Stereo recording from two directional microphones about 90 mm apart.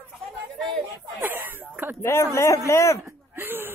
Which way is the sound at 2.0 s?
30° left (ahead or behind).